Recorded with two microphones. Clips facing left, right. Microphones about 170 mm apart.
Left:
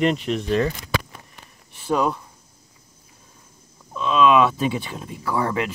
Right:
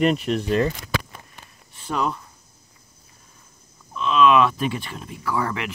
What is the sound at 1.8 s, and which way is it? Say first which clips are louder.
Speech: left 4 dB; 10° left (ahead or behind).